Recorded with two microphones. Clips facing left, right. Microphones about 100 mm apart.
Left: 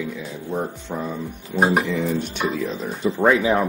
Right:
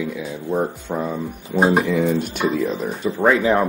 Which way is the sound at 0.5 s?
20° right (ahead or behind).